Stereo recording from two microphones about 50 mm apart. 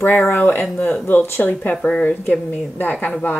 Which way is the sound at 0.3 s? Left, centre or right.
Left.